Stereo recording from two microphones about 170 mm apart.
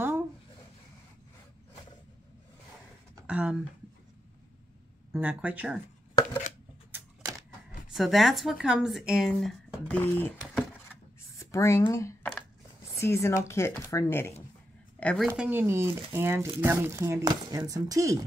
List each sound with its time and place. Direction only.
3.3 s speech: 5° right (ahead or behind)
5.1 s speech: 10° right (ahead or behind)
7.9 s speech: centre (ahead or behind)
11.3 s a sound: 15° left (ahead or behind)
11.9 s speech: 15° left (ahead or behind)
15.2 s speech: 10° right (ahead or behind)